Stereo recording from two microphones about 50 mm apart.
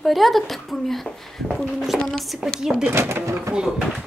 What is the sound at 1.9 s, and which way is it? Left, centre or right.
Speech, centre.